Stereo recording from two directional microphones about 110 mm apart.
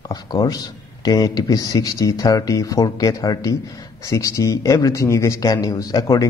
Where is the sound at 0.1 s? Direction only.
35° left (ahead or behind).